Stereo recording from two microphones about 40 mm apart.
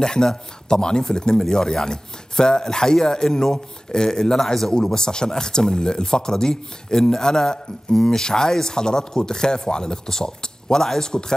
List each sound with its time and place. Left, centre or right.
0.0 s speech: centre